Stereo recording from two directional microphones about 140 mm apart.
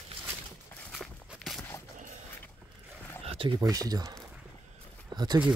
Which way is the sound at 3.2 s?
40° right (ahead or behind).